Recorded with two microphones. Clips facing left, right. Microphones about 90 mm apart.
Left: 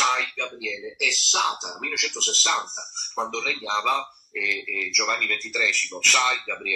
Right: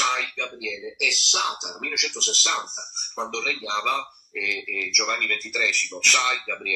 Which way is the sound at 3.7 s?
40° left (ahead or behind).